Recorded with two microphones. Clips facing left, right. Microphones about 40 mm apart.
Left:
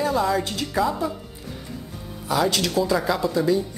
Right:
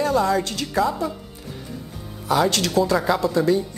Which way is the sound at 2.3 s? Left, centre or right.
Centre.